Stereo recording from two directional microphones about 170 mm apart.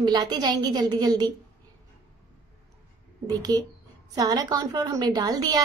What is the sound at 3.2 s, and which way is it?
A woman's voice, 25° right (ahead or behind).